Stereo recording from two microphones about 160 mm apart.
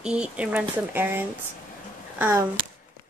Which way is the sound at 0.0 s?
5° right (ahead or behind).